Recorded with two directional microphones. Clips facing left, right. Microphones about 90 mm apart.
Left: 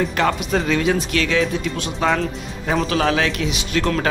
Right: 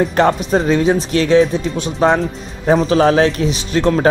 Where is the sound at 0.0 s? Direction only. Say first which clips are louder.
Right 6 dB; 35° right (ahead or behind).